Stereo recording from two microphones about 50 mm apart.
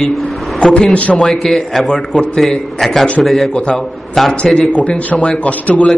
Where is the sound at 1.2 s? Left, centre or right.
Centre.